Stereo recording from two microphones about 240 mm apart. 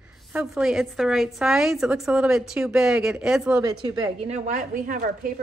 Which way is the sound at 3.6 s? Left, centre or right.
Centre.